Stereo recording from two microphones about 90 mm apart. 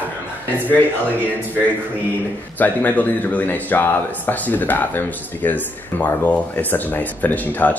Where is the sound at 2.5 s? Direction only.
20° left (ahead or behind).